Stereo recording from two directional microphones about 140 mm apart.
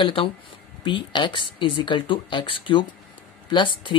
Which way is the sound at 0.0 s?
40° left (ahead or behind).